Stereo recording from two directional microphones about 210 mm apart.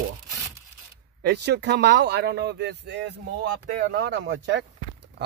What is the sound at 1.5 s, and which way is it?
Speech, 55° right (ahead or behind).